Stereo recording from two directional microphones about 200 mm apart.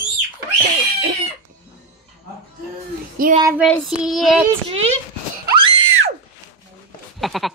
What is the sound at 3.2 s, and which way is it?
Child singing, 45° right (ahead or behind).